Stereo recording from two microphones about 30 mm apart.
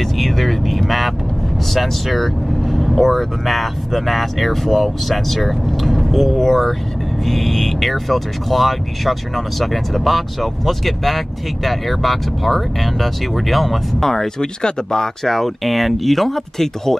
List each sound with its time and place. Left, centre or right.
0.0 s vehicle: centre
1.7 s speech: centre
14.4 s speech: left
15.2 s speech: centre